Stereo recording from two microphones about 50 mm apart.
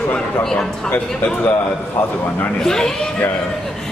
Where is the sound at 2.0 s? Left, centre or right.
Left.